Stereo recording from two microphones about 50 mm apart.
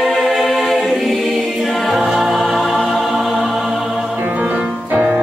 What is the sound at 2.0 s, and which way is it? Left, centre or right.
Music, centre.